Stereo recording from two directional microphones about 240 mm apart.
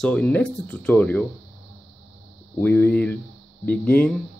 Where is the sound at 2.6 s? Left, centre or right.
Centre.